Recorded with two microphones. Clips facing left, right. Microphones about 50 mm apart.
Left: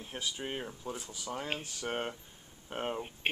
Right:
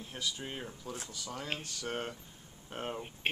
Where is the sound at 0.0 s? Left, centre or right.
Left.